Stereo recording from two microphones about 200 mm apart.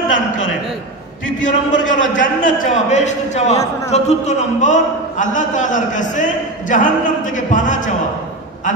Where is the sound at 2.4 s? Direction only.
35° left (ahead or behind).